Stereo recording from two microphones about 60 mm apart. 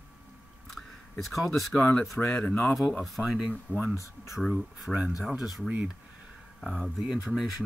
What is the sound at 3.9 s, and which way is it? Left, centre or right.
Speech, left.